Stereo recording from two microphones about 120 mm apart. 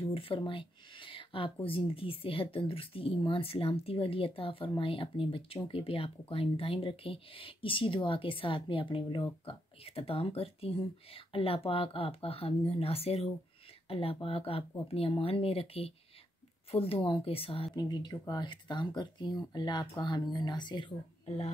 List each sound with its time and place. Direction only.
0.0 s speech: 50° left (ahead or behind)
17.7 s speech: 35° left (ahead or behind)